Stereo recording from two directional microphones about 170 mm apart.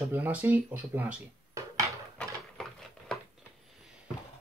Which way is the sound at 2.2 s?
Centre (ahead or behind).